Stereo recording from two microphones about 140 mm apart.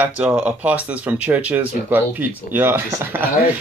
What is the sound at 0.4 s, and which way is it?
Speech, 10° right (ahead or behind).